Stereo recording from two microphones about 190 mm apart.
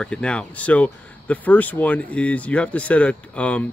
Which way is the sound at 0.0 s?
5° left (ahead or behind).